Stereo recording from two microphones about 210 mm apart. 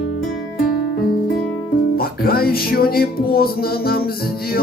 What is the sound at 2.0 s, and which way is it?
Music, 45° left (ahead or behind).